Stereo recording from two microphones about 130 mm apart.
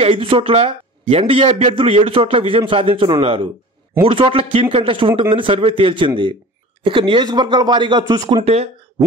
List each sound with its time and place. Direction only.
0.0 s a man's voice: 45° right (ahead or behind)
8.5 s speech: 55° right (ahead or behind)